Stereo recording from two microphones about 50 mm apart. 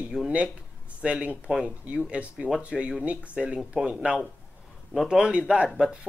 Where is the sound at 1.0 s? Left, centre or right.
Right.